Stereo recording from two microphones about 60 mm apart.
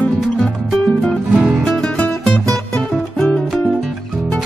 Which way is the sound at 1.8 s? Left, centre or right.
Centre.